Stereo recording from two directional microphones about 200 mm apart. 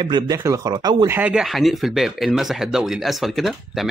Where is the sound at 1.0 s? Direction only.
10° right (ahead or behind).